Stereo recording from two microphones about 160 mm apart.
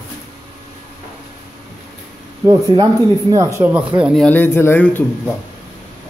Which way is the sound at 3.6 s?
10° right (ahead or behind).